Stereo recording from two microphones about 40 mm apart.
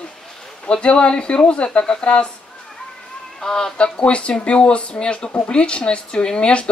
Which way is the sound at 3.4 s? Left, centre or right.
Centre.